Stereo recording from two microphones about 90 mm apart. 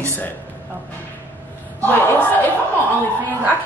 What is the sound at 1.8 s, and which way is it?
Speech, 20° left (ahead or behind).